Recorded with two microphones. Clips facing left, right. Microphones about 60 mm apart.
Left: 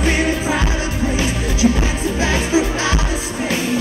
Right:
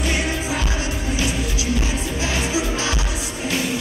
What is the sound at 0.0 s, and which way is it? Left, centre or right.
Music, left.